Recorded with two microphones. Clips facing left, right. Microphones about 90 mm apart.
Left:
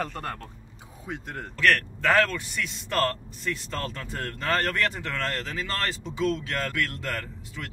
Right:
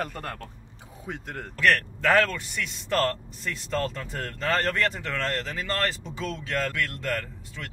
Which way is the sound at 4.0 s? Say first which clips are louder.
Right 1 dB; centre (ahead or behind).